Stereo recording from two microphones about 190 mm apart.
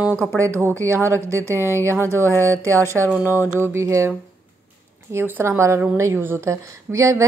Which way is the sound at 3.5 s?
15° right (ahead or behind).